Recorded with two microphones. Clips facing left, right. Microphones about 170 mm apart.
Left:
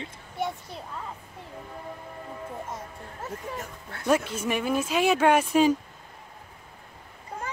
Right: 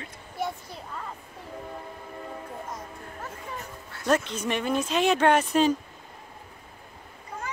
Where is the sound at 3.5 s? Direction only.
55° left (ahead or behind).